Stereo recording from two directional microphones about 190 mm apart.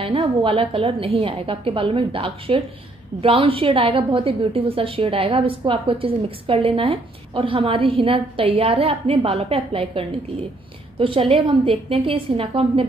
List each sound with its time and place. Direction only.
0.0 s a woman's voice: 30° right (ahead or behind)